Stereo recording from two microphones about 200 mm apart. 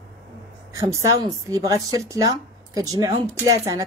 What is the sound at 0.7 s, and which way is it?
A woman's voice, 15° right (ahead or behind).